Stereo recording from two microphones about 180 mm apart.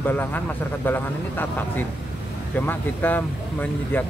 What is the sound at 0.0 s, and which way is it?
Speech, 10° left (ahead or behind).